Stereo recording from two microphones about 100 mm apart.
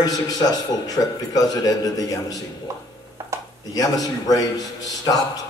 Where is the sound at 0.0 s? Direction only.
40° left (ahead or behind).